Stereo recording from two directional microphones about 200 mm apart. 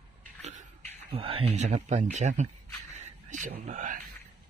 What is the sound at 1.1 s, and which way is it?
Speech, 25° right (ahead or behind).